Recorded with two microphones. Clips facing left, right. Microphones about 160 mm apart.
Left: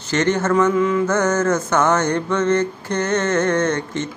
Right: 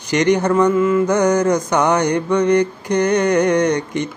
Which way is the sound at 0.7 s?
5° right (ahead or behind).